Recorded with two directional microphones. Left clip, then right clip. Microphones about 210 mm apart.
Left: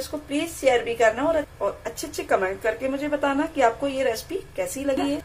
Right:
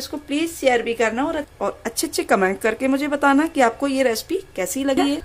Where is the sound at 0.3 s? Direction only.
50° right (ahead or behind).